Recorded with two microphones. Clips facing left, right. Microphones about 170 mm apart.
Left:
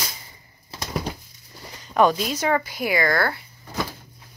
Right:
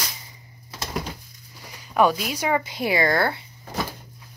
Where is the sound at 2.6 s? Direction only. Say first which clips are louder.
Right 1 dB; 25° right (ahead or behind).